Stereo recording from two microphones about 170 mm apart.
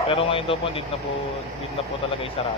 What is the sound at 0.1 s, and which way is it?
Speech, 35° left (ahead or behind).